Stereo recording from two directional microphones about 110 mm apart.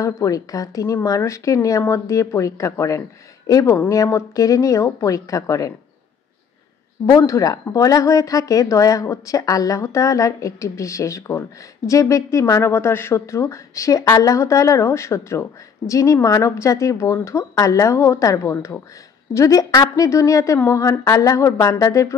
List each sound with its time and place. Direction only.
0.0 s speech: 30° left (ahead or behind)
7.1 s speech: 30° left (ahead or behind)